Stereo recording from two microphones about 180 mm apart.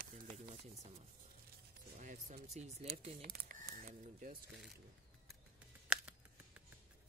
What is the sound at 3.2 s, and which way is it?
Speech, 55° right (ahead or behind).